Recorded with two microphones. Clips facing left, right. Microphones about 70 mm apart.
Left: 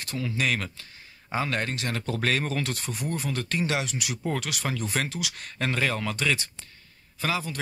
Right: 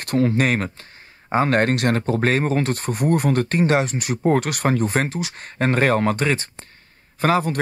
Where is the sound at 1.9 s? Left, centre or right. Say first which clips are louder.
Right 8 dB; right.